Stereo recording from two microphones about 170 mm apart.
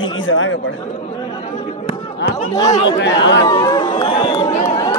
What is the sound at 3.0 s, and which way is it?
Speech, 90° left.